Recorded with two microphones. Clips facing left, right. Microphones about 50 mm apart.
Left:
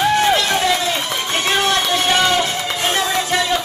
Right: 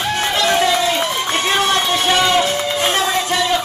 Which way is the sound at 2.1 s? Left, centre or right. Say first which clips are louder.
Right 2 dB; right.